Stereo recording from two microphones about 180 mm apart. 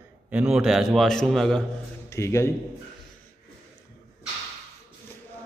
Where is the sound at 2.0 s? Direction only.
15° left (ahead or behind).